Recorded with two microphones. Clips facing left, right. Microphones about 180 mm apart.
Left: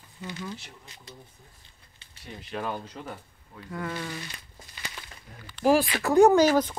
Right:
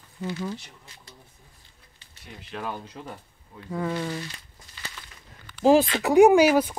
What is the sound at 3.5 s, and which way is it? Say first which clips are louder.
Speech: right 5 dB; 20° right (ahead or behind).